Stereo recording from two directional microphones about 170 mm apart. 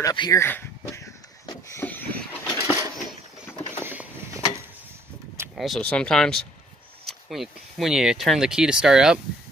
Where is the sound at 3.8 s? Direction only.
15° right (ahead or behind).